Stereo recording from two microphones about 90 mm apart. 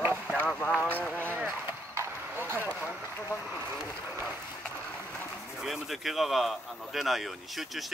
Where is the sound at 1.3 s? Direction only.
20° right (ahead or behind).